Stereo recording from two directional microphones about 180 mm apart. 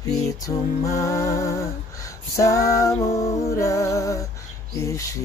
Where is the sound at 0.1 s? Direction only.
20° left (ahead or behind).